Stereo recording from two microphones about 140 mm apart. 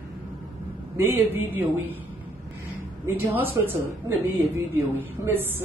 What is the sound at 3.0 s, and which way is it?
Speech, 15° right (ahead or behind).